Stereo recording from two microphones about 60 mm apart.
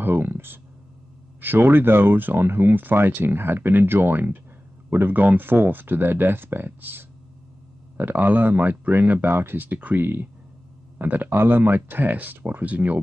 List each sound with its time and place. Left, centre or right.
0.0 s a sound: right
1.4 s speech: right
9.6 s speech: right